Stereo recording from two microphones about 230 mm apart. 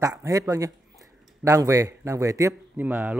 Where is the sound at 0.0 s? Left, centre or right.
Centre.